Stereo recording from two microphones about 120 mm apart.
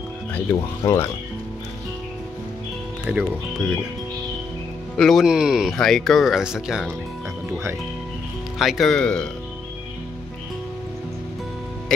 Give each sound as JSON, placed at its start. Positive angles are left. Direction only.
{"t": 0.8, "sound": "speech", "side_deg": 25}
{"t": 3.1, "sound": "speech", "side_deg": -10}
{"t": 4.9, "sound": "speech", "side_deg": 0}
{"t": 8.5, "sound": "speech", "side_deg": 0}